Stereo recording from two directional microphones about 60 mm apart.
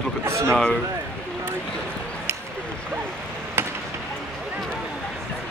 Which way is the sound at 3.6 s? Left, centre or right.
Right.